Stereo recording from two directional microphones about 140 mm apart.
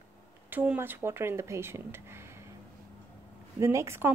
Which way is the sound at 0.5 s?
15° right (ahead or behind).